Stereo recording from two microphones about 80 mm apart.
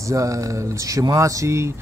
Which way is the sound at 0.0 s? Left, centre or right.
Right.